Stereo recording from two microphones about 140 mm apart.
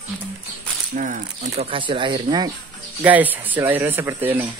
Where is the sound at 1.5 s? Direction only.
45° right (ahead or behind).